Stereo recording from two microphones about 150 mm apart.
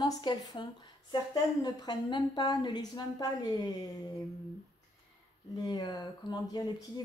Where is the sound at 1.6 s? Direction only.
30° left (ahead or behind).